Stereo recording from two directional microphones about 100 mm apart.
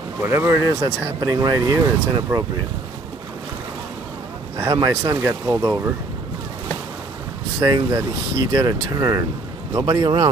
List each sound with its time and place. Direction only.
0.2 s speech: 25° right (ahead or behind)
1.2 s speech: 40° right (ahead or behind)
4.6 s speech: 40° right (ahead or behind)
7.6 s a man's voice: 40° right (ahead or behind)